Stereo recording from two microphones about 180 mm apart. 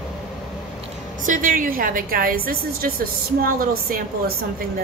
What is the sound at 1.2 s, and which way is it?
A woman's voice, 50° right (ahead or behind).